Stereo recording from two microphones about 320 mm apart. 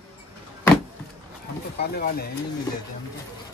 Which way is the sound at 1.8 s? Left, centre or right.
Left.